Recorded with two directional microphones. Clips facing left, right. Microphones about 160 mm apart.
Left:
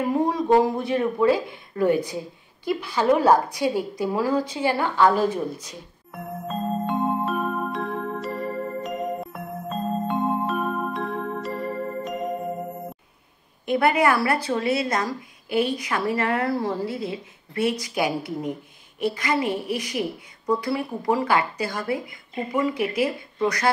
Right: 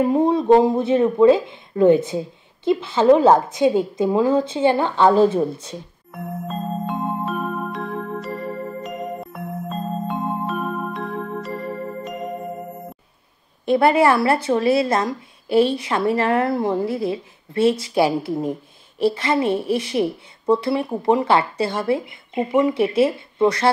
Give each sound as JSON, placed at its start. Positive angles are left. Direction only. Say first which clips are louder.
{"t": 0.0, "sound": "speech", "louder": "right 5 dB", "side_deg": -20}
{"t": 6.1, "sound": "music", "louder": "right 2 dB", "side_deg": 0}
{"t": 13.7, "sound": "speech", "louder": "right 5 dB", "side_deg": -30}